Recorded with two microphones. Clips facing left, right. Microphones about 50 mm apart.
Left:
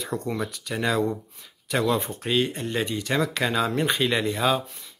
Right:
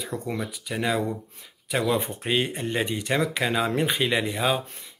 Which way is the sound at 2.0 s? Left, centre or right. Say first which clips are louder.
Left 1 dB; right.